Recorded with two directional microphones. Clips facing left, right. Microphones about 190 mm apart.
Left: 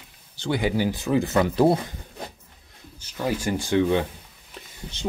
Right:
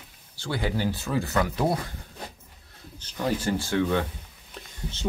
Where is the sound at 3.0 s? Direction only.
10° left (ahead or behind).